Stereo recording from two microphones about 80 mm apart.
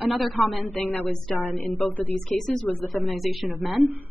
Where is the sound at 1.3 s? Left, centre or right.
Left.